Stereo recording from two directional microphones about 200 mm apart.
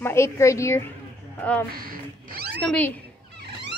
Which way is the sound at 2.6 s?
5° left (ahead or behind).